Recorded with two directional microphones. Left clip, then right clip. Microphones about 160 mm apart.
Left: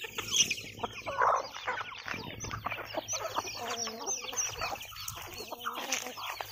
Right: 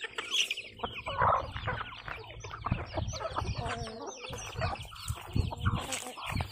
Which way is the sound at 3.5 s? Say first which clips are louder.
Left 1 dB; 10° right (ahead or behind).